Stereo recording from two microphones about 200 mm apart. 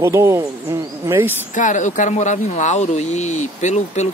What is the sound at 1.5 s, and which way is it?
Speech, 40° left (ahead or behind).